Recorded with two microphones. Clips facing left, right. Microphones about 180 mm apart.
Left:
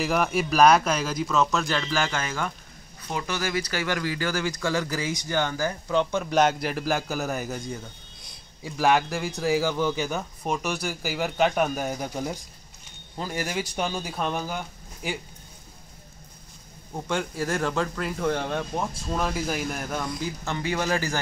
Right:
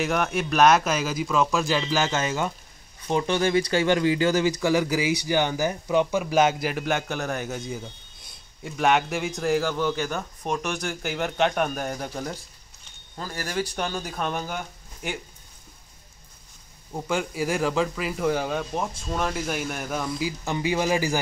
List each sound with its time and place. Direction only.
0.0 s speech: centre (ahead or behind)
16.9 s speech: 5° right (ahead or behind)
20.4 s speech: 15° right (ahead or behind)